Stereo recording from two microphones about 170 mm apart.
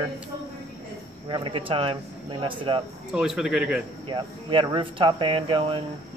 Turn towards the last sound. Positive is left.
turn(degrees=-30)  # may be behind; listen again after turning